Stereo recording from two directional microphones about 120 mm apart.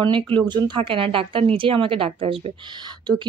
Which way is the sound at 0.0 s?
40° right (ahead or behind).